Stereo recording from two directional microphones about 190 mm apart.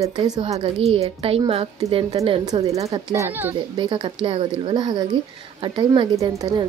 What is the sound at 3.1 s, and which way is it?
Speech, 15° right (ahead or behind).